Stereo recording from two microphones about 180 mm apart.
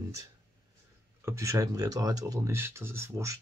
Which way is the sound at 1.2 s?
15° right (ahead or behind).